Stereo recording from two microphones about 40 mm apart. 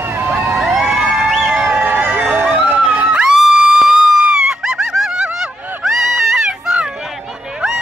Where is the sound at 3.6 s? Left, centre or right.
Right.